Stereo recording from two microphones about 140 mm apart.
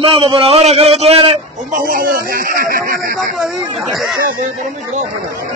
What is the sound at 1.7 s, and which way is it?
Speech, 80° right.